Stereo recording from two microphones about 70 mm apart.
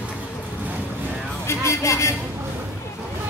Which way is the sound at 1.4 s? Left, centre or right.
Left.